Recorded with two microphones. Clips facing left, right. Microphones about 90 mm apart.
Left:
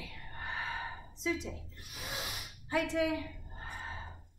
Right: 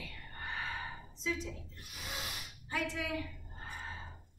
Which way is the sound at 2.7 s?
10° left (ahead or behind).